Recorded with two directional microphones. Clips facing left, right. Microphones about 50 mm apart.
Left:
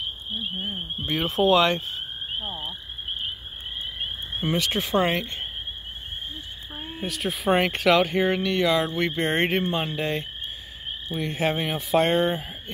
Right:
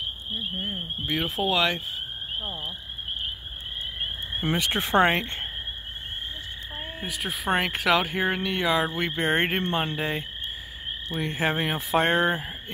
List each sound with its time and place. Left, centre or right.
1.0 s speech: centre
4.5 s speech: right
4.8 s speech: right
6.9 s speech: centre